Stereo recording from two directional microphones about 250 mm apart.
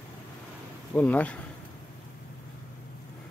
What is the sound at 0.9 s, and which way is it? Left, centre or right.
Speech, centre.